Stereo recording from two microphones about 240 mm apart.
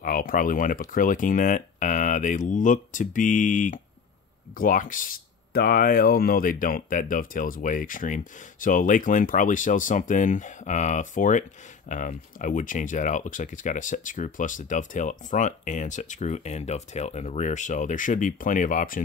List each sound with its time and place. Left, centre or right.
0.0 s speech: left